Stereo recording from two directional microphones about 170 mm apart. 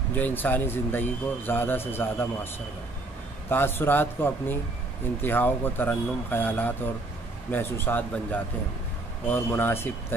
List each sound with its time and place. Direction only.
0.1 s speech: 10° left (ahead or behind)
3.4 s speech: 10° left (ahead or behind)